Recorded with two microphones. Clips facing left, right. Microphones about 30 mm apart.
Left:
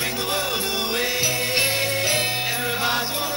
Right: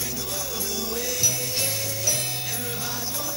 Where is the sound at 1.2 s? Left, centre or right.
Left.